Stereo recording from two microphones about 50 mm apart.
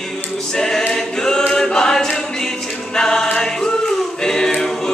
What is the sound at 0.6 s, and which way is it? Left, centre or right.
Choir, centre.